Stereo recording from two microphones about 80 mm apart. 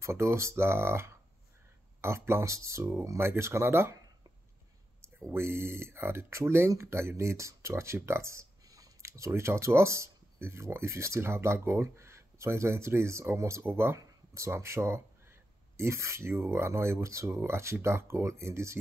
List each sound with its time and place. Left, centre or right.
0.0 s speech: right
5.2 s speech: right